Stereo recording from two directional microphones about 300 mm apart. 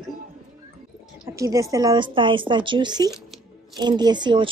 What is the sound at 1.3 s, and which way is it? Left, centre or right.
Speech, centre.